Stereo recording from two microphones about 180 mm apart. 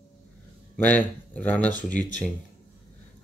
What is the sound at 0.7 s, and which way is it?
Speech, 10° left (ahead or behind).